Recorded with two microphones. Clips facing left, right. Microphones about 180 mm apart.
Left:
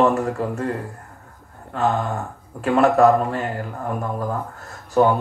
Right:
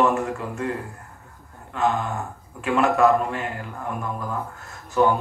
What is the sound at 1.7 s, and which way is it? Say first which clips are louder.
Speech: left 2 dB; 35° left (ahead or behind).